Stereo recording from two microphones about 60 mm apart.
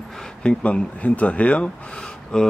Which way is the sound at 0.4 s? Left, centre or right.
Centre.